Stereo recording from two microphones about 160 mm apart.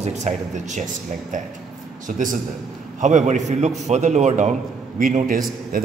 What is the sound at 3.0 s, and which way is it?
A man's voice, 50° right (ahead or behind).